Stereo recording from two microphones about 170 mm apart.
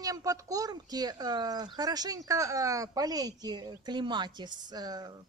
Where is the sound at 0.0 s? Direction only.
20° right (ahead or behind).